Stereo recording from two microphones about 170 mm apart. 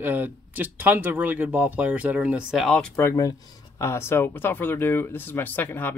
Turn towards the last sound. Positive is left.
turn(degrees=10)  # may be behind; listen again after turning